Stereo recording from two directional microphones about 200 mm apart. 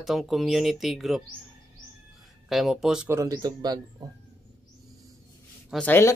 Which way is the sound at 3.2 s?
15° right (ahead or behind).